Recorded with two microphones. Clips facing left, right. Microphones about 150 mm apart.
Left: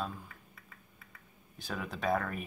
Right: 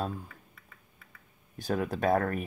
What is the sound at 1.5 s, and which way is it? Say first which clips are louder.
Speech: right 9 dB; 45° right (ahead or behind).